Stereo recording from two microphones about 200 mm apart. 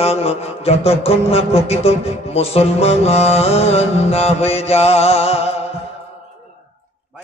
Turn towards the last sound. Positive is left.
turn(degrees=30)  # may be behind; listen again after turning